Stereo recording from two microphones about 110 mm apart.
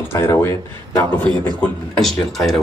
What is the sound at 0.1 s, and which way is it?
Speech, 20° left (ahead or behind).